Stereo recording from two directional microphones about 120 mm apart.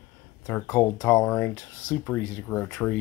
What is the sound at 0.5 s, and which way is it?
Speech, 20° left (ahead or behind).